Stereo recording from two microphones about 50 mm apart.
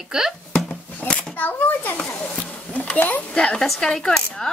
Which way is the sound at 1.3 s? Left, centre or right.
Left.